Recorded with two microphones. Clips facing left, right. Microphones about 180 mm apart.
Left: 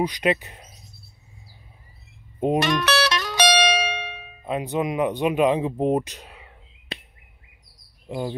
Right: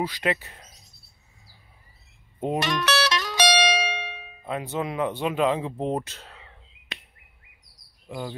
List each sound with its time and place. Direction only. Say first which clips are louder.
0.0 s speech: left 4 dB; 20° left (ahead or behind)
2.6 s music: left 3 dB; 55° left (ahead or behind)
4.5 s speech: left 4 dB; 20° left (ahead or behind)
6.9 s a sound: left 6 dB; 35° left (ahead or behind)
8.1 s speech: left 5 dB; 20° left (ahead or behind)